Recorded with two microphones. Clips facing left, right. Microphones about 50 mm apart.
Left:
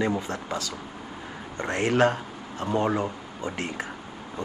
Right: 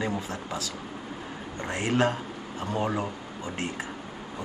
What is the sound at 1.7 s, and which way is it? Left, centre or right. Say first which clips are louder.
Speech: left 3 dB; left.